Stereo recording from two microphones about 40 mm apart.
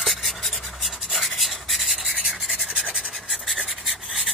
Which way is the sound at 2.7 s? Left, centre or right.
Right.